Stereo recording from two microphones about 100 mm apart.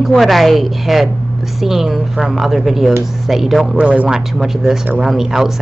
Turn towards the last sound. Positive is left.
turn(degrees=-5)  # may be behind; listen again after turning